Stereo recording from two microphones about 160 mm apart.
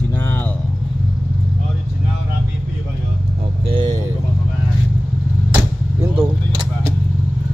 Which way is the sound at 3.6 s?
30° right (ahead or behind).